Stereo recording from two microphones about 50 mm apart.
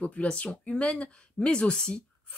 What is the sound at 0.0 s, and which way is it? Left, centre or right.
Speech, left.